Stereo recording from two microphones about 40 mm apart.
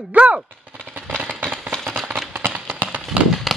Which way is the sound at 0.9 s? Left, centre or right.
Right.